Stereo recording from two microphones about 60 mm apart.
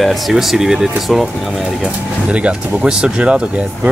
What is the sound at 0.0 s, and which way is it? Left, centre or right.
Speech, centre.